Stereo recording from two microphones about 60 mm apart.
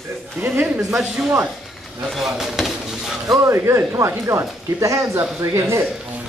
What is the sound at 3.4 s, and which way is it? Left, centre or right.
Speech, right.